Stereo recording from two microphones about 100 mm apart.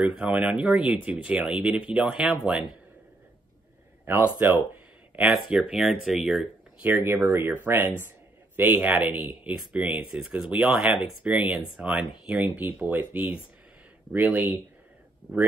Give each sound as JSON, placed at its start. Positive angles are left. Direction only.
{"t": 0.0, "sound": "speech", "side_deg": -10}
{"t": 4.0, "sound": "speech", "side_deg": -20}
{"t": 5.1, "sound": "speech", "side_deg": -5}
{"t": 6.9, "sound": "speech", "side_deg": -20}